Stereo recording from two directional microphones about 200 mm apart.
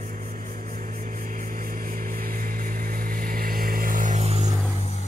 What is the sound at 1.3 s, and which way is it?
Vehicle, 45° right (ahead or behind).